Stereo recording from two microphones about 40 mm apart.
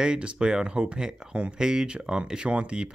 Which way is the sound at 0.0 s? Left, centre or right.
Centre.